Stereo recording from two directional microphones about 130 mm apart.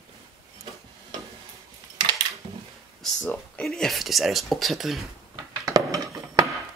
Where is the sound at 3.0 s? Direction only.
5° left (ahead or behind).